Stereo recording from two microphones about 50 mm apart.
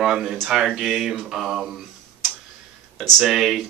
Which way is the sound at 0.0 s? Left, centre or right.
Centre.